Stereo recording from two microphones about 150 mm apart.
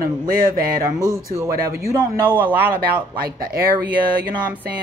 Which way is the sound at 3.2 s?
80° right.